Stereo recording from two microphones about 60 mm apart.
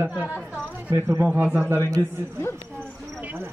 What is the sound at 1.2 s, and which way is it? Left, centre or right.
Speech, right.